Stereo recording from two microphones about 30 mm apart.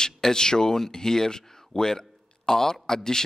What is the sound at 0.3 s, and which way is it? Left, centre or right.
Speech, left.